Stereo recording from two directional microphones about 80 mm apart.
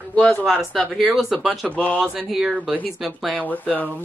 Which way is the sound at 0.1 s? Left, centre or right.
Centre.